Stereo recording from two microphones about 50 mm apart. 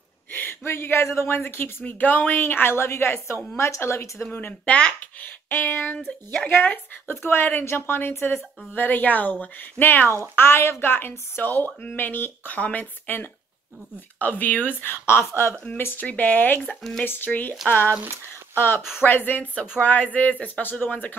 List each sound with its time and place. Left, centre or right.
0.4 s speech: left
1.8 s a woman's voice: left
3.5 s a woman's voice: left
4.3 s speech: left
5.5 s a woman's voice: left
7.2 s a woman's voice: left
9.8 s a woman's voice: left
16.0 s a woman's voice: left
20.8 s speech: left